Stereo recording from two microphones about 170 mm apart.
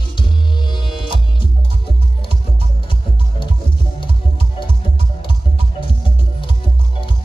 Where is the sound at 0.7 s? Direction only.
30° left (ahead or behind).